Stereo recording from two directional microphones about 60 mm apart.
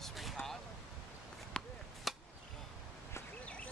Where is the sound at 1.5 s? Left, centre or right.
Centre.